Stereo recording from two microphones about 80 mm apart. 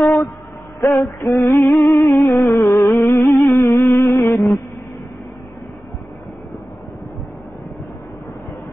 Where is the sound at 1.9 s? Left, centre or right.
Left.